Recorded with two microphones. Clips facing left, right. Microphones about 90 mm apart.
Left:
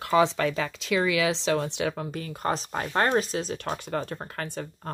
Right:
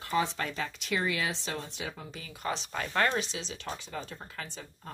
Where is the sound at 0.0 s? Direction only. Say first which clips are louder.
Left 8 dB; 90° left.